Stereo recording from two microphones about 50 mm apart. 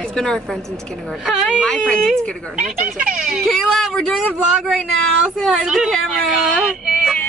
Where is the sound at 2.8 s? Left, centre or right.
Right.